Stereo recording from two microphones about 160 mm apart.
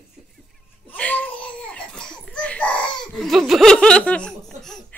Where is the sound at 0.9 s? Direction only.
10° left (ahead or behind).